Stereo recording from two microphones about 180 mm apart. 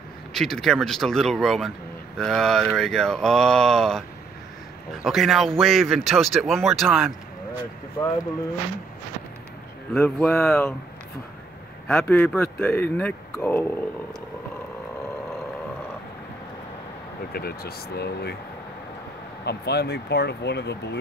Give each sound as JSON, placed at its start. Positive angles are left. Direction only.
{"t": 0.3, "sound": "speech", "side_deg": 0}
{"t": 5.0, "sound": "speech", "side_deg": 0}
{"t": 9.9, "sound": "speech", "side_deg": 5}
{"t": 11.9, "sound": "speech", "side_deg": 10}
{"t": 17.3, "sound": "speech", "side_deg": 60}
{"t": 19.4, "sound": "speech", "side_deg": 65}